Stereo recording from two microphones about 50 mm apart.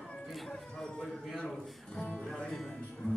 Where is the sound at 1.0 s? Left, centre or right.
Centre.